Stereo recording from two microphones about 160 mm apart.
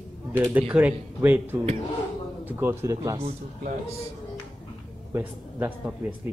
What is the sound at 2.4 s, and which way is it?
Speech, 15° right (ahead or behind).